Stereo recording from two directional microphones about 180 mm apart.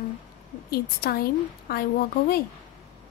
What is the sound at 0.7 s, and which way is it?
A woman's voice, 60° left (ahead or behind).